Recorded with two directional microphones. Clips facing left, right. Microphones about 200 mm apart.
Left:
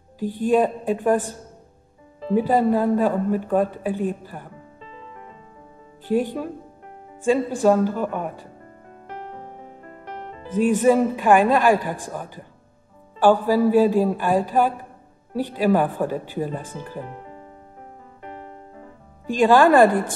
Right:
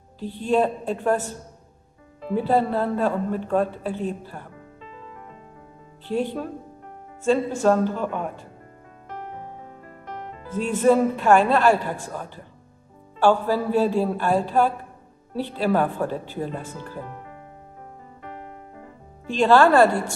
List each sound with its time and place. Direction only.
0.5 s a woman's voice: 15° left (ahead or behind)
2.3 s a woman's voice: 15° left (ahead or behind)
6.1 s a woman's voice: 5° left (ahead or behind)
10.5 s a woman's voice: 15° left (ahead or behind)
19.4 s a woman's voice: 15° left (ahead or behind)